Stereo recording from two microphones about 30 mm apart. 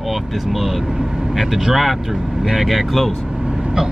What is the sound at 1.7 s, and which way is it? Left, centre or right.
Speech, centre.